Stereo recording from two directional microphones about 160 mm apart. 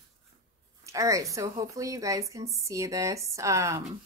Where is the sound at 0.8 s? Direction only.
20° right (ahead or behind).